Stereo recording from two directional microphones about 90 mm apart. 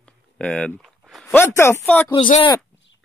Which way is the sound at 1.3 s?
30° left (ahead or behind).